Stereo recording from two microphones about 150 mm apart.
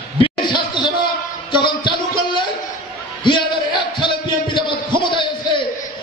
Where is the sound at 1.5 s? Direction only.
30° left (ahead or behind).